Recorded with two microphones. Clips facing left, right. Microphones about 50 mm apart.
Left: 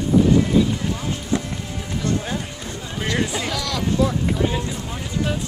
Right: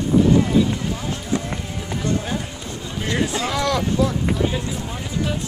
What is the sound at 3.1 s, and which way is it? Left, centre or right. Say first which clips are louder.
Speech: right 1 dB; centre.